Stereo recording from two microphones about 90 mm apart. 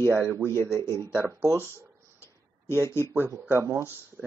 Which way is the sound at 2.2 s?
30° left (ahead or behind).